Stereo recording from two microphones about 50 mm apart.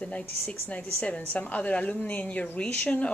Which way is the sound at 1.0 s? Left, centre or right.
Left.